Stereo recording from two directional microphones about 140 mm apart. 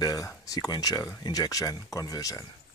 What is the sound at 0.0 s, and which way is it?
Speech, 25° left (ahead or behind).